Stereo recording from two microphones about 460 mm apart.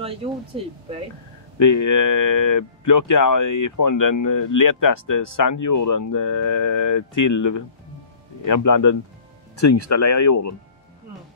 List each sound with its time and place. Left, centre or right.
0.0 s speech: centre
1.6 s speech: left